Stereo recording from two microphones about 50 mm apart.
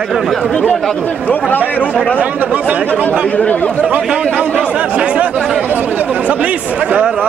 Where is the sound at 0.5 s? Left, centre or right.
Centre.